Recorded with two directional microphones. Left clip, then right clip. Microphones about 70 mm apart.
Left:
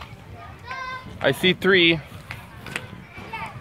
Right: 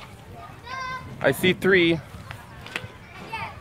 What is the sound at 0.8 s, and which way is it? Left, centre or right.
Speech, right.